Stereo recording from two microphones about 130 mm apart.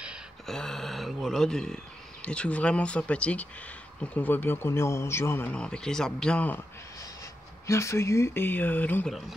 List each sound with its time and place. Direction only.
0.5 s a sound: 5° left (ahead or behind)
2.2 s speech: 10° left (ahead or behind)
7.6 s speech: 25° left (ahead or behind)